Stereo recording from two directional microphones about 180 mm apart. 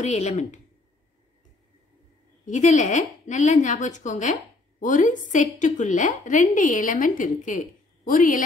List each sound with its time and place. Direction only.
0.0 s speech: 40° left (ahead or behind)
2.4 s speech: 40° left (ahead or behind)